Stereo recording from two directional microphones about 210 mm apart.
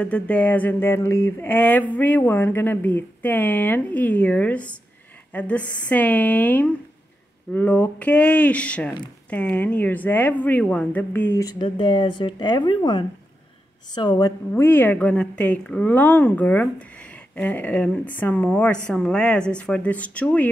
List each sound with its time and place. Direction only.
0.0 s speech: 5° left (ahead or behind)
14.5 s speech: 10° left (ahead or behind)